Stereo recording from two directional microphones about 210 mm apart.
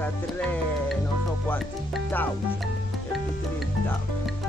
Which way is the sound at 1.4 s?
5° left (ahead or behind).